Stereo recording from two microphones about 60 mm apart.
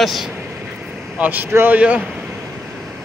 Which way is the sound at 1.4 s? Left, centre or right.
Right.